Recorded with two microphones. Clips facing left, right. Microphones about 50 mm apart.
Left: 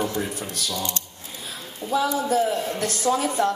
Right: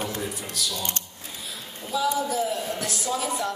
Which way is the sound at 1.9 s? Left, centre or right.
Left.